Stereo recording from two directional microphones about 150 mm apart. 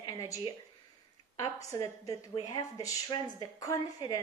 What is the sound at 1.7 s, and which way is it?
Speech, 25° left (ahead or behind).